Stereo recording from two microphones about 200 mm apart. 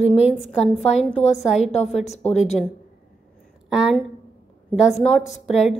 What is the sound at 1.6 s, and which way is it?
Speech, 35° left (ahead or behind).